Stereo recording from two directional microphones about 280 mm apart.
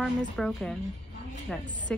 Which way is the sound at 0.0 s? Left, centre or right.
Centre.